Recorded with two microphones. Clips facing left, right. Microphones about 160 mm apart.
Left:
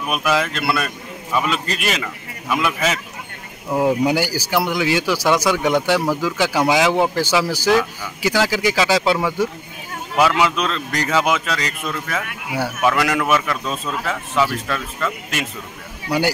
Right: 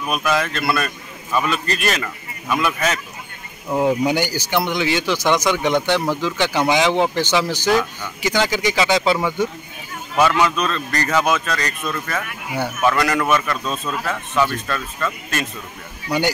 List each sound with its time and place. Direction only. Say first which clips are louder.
0.0 s speech: left 1 dB; 5° left (ahead or behind)